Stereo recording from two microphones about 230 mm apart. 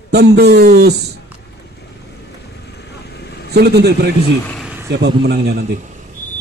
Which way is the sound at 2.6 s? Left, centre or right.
Left.